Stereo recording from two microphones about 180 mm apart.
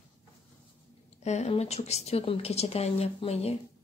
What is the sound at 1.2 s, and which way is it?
A woman's voice, 40° left (ahead or behind).